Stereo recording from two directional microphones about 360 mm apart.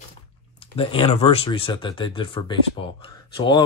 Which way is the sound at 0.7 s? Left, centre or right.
Centre.